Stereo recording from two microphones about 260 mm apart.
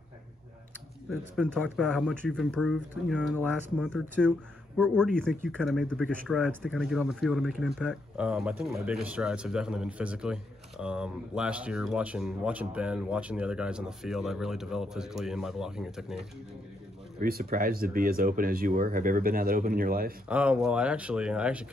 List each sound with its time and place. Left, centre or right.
1.1 s speech: centre
17.2 s speech: right
20.2 s speech: centre